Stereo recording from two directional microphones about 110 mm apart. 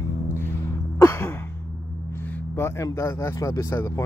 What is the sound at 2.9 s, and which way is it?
Speech, 25° left (ahead or behind).